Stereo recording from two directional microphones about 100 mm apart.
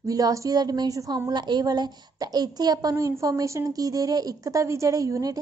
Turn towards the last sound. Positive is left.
turn(degrees=-35)  # may be behind; listen again after turning